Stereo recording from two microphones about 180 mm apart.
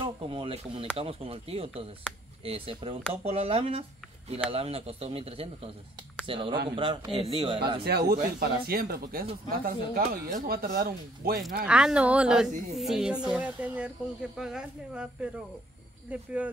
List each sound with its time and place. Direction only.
0.0 s a man's voice: 30° right (ahead or behind)
7.8 s speech: 60° right (ahead or behind)
11.6 s a woman's voice: 5° right (ahead or behind)